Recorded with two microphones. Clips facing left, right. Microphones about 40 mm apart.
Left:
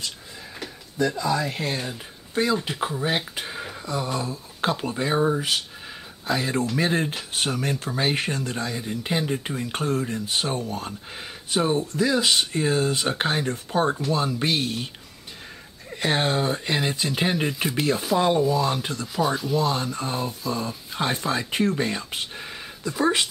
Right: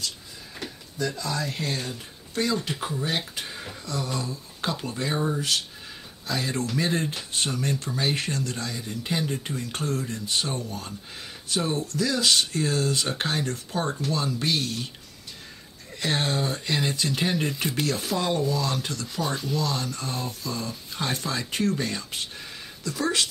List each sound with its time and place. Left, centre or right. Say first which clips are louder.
0.9 s speech: left 6 dB; centre
15.9 s speech: left 4 dB; left
19.2 s speech: left 5 dB; centre
19.5 s speech: left 4 dB; left